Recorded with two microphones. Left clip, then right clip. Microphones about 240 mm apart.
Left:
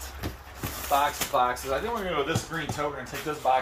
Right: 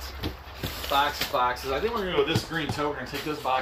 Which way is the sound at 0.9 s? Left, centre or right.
Left.